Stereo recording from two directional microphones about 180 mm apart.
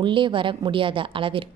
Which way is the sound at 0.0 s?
25° right (ahead or behind).